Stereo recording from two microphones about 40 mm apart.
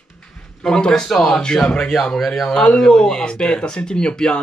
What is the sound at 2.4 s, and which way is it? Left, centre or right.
Speech, centre.